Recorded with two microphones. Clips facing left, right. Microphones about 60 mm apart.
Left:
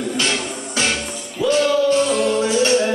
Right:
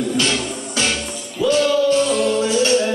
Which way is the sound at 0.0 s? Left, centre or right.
Left.